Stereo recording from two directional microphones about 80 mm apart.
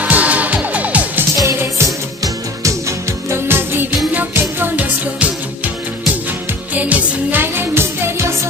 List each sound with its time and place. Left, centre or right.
0.0 s music: centre
1.3 s music: right
3.3 s music: right
6.7 s music: centre